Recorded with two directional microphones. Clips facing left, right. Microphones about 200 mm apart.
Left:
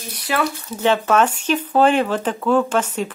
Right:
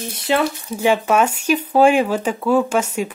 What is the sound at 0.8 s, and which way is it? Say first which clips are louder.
Speech: right 1 dB; 10° right (ahead or behind).